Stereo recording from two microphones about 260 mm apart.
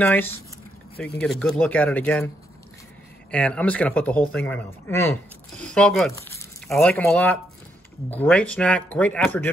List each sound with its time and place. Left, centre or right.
0.0 s speech: centre
0.9 s speech: left
1.2 s speech: centre